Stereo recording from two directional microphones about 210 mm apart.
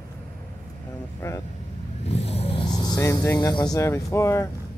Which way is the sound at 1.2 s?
15° left (ahead or behind).